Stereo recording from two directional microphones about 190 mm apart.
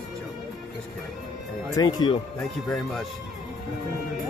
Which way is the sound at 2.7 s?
Centre (ahead or behind).